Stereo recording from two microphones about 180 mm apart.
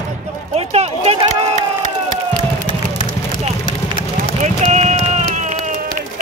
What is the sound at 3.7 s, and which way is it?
Run, 50° left (ahead or behind).